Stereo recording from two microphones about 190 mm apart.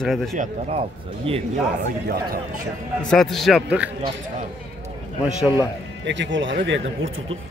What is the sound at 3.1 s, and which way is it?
Speech, centre (ahead or behind).